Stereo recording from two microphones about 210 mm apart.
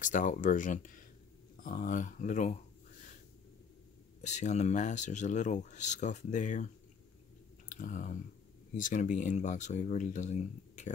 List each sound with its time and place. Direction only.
0.0 s speech: 40° left (ahead or behind)
4.2 s speech: 35° left (ahead or behind)
7.7 s speech: 40° left (ahead or behind)